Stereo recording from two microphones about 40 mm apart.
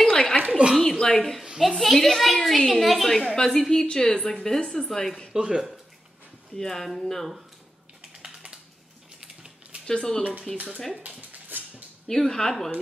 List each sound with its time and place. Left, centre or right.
0.0 s a sound: centre
0.4 s speech: right
0.7 s a woman's voice: centre
3.8 s a woman's voice: left
5.3 s speech: centre
6.5 s a woman's voice: centre
9.8 s a woman's voice: centre
11.0 s dog: right
12.1 s a woman's voice: centre